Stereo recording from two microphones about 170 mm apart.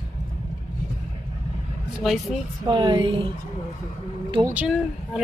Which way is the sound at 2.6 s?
25° right (ahead or behind).